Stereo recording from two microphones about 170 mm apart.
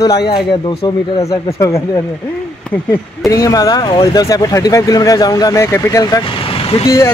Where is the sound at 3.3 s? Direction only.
20° left (ahead or behind).